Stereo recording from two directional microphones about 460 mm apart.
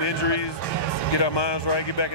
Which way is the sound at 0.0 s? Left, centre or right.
Left.